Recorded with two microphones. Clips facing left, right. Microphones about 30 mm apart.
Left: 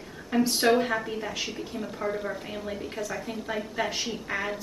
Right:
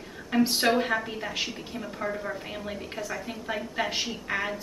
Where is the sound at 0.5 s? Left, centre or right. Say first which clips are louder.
Left 1 dB; centre.